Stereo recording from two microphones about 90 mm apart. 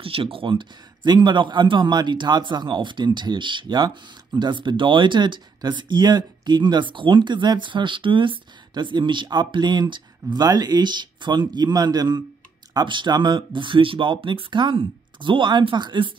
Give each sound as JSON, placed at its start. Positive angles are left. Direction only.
{"t": 0.0, "sound": "speech", "side_deg": -85}